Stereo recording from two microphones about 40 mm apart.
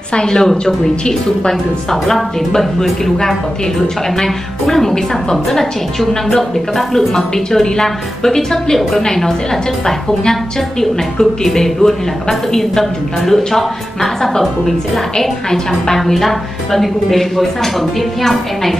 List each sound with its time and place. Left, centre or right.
0.1 s a woman's voice: centre
1.5 s a woman's voice: centre
4.6 s a woman's voice: centre
10.8 s a woman's voice: centre